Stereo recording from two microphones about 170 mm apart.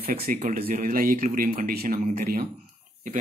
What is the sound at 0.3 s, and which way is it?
Speech, 55° right (ahead or behind).